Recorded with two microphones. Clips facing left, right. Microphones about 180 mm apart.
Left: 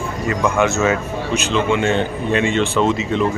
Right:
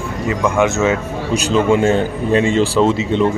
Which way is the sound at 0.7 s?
20° right (ahead or behind).